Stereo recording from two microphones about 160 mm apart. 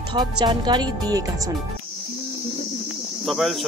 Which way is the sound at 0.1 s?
30° right (ahead or behind).